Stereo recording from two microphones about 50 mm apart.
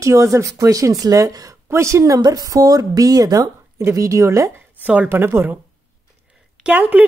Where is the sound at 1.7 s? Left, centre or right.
Right.